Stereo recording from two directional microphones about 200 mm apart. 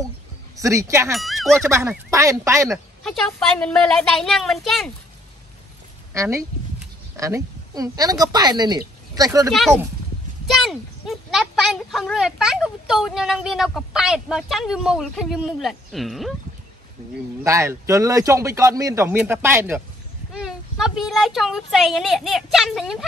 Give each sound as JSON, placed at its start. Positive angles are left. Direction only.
{"t": 0.6, "sound": "a man's voice", "side_deg": -15}
{"t": 1.1, "sound": "speech", "side_deg": 0}
{"t": 1.8, "sound": "a man's voice", "side_deg": -10}
{"t": 2.7, "sound": "speech", "side_deg": 0}
{"t": 6.1, "sound": "a man's voice", "side_deg": -15}
{"t": 9.5, "sound": "speech", "side_deg": 0}
{"t": 17.4, "sound": "a man's voice", "side_deg": -15}
{"t": 20.3, "sound": "speech", "side_deg": 0}